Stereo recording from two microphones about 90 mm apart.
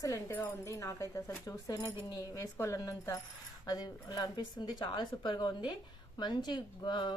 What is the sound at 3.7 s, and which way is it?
Speech, 45° left (ahead or behind).